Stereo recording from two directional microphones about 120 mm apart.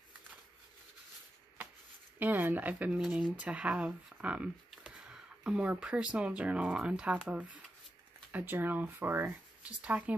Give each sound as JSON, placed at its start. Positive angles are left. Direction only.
{"t": 2.1, "sound": "speech", "side_deg": -15}